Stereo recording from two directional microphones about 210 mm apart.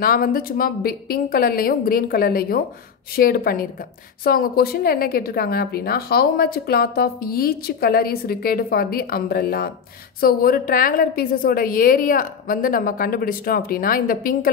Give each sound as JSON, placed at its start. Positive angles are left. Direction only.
{"t": 0.0, "sound": "a woman's voice", "side_deg": 45}